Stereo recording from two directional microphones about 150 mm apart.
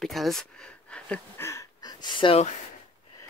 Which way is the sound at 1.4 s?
20° left (ahead or behind).